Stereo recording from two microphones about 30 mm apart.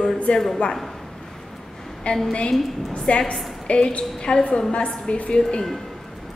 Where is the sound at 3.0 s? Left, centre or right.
Left.